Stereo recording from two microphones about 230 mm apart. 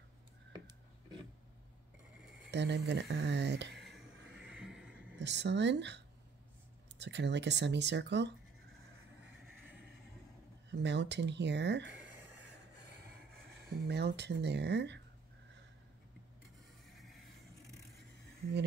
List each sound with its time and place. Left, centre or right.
0.5 s a sound: centre
2.5 s speech: right
5.2 s speech: right
10.7 s speech: right
13.7 s speech: right